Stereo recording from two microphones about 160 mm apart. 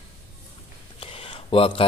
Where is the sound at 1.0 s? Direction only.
35° left (ahead or behind).